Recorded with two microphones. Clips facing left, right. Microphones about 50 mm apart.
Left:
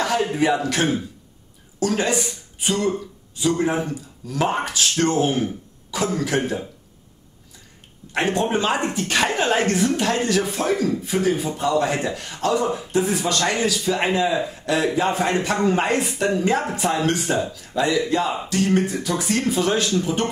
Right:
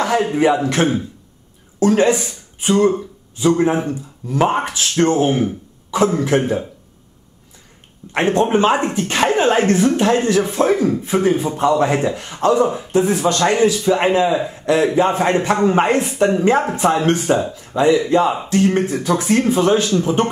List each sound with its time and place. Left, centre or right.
0.0 s a man's voice: right
8.1 s a man's voice: right